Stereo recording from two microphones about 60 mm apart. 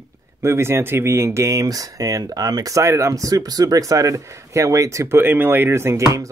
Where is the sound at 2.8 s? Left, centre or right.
Right.